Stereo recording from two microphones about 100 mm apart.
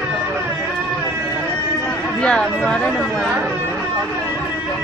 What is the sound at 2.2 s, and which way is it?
Speech, 10° left (ahead or behind).